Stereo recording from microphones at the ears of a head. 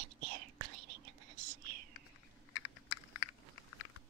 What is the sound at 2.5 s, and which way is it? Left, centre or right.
Computer keyboard, left.